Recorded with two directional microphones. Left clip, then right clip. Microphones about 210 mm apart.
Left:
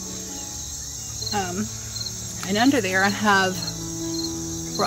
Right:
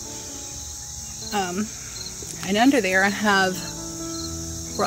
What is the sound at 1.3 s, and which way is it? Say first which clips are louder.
Speech: right 1 dB; 25° right (ahead or behind).